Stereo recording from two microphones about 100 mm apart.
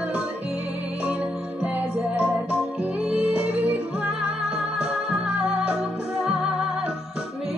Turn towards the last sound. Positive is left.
turn(degrees=-10)  # may be behind; listen again after turning